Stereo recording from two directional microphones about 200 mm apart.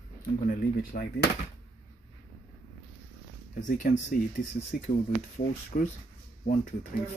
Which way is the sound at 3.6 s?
40° left (ahead or behind).